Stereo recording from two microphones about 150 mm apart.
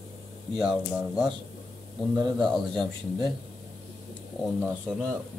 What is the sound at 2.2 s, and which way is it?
Speech, 30° right (ahead or behind).